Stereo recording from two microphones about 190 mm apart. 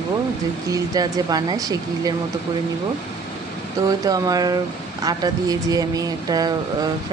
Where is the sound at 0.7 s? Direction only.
20° right (ahead or behind).